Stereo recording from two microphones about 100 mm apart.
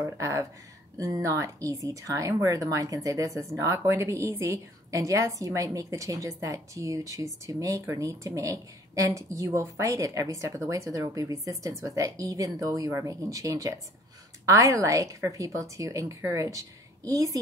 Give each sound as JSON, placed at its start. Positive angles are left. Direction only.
{"t": 0.0, "sound": "a woman's voice", "side_deg": -30}